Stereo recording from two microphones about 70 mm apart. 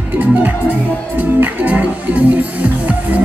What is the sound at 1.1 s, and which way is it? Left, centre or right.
Music, right.